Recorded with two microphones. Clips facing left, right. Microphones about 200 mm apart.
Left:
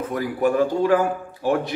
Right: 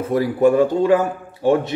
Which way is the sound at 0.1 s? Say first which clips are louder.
Right 7 dB; 25° right (ahead or behind).